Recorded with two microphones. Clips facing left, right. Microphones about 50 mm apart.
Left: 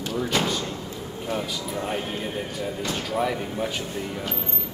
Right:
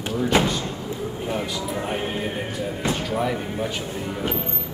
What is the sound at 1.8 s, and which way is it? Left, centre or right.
Speech, right.